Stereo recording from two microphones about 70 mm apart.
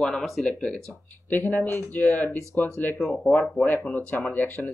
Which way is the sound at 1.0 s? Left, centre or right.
Left.